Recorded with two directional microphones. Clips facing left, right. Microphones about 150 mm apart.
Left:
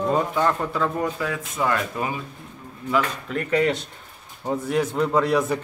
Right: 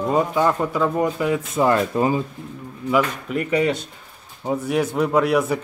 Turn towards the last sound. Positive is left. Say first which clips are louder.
# right 2 dB
turn(degrees=-5)  # may be behind; listen again after turning